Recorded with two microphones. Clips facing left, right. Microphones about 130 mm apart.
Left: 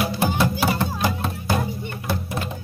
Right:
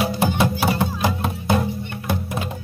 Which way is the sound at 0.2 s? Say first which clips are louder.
Even; 15° right (ahead or behind).